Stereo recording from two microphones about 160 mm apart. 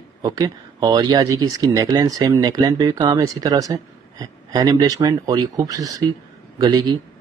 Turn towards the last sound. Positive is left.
turn(degrees=-25)  # may be behind; listen again after turning